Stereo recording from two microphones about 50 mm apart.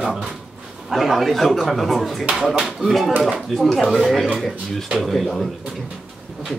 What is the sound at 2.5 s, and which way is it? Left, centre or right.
Speech, centre.